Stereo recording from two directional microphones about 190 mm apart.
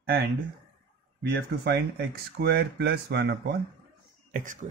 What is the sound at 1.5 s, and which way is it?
Speech, 65° right (ahead or behind).